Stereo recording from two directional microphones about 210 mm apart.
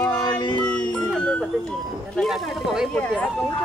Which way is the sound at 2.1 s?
Centre (ahead or behind).